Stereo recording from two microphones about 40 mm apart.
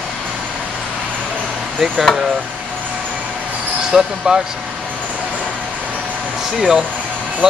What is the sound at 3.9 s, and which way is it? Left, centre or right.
Speech, centre.